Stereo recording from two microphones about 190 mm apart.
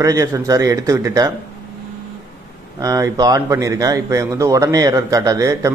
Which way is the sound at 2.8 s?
20° right (ahead or behind).